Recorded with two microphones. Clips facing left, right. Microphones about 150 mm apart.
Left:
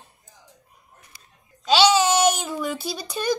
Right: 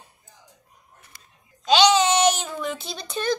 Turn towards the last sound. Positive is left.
turn(degrees=10)  # may be behind; listen again after turning